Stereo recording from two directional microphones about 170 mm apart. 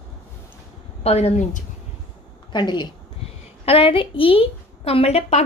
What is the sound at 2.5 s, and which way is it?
A woman's voice, 25° left (ahead or behind).